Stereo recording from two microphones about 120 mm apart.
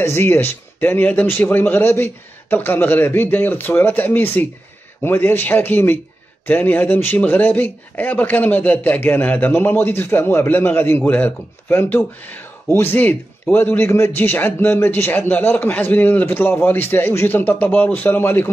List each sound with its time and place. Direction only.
0.0 s speech: 20° left (ahead or behind)